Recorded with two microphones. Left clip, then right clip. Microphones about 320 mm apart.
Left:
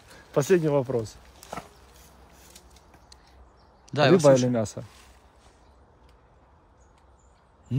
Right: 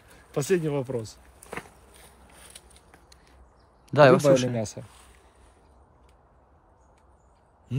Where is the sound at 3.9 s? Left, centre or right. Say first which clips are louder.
Right 1 dB; right.